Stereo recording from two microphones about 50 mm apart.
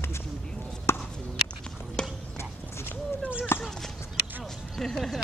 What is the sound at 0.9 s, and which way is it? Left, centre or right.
Chop, left.